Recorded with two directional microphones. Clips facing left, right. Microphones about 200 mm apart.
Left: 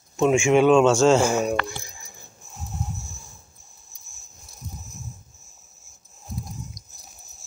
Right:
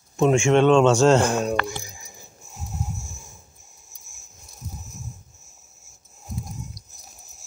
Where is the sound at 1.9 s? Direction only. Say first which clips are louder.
Right 2 dB; 10° right (ahead or behind).